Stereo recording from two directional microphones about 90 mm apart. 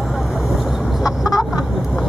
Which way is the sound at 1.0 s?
45° left (ahead or behind).